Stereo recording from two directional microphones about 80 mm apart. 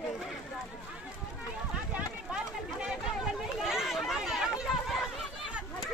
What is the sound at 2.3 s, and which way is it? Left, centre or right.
Run, centre.